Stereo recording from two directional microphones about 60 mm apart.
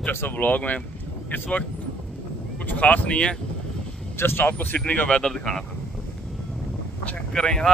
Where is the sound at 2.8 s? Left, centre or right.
Left.